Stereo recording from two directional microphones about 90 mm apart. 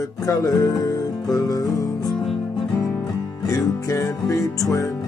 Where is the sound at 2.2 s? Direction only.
5° left (ahead or behind).